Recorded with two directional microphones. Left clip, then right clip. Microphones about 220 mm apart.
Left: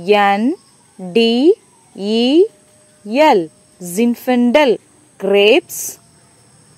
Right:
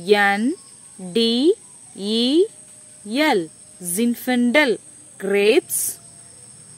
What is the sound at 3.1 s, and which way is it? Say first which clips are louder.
A woman's voice: left 8 dB; 10° left (ahead or behind).